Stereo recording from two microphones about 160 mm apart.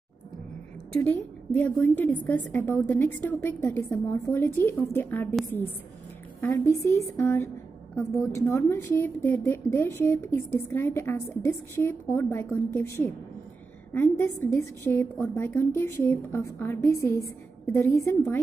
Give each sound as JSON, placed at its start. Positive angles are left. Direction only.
{"t": 1.0, "sound": "a woman's voice", "side_deg": 10}